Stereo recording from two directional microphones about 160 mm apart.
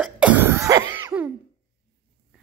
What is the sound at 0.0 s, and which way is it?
Cough, 10° right (ahead or behind).